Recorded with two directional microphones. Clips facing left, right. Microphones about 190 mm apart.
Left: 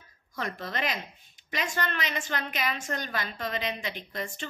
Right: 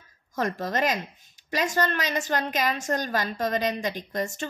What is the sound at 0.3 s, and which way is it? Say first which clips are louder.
A woman's voice: right 7 dB; 45° right (ahead or behind).